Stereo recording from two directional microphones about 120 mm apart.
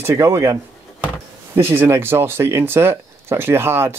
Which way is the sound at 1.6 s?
20° right (ahead or behind).